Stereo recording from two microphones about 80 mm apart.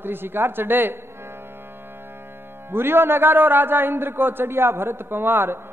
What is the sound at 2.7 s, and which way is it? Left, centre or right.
A man's voice, right.